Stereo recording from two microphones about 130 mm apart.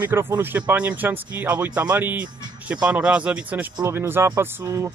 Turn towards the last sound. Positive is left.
turn(degrees=-30)  # may be behind; listen again after turning